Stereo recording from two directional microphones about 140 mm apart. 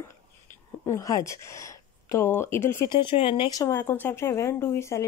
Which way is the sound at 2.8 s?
35° left (ahead or behind).